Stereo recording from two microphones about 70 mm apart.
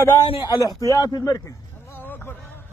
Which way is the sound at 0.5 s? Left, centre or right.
Left.